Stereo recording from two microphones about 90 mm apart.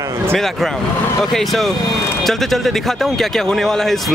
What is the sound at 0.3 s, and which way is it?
Speech, 5° left (ahead or behind).